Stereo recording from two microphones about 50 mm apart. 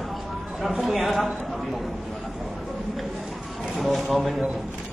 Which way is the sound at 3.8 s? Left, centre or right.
Centre.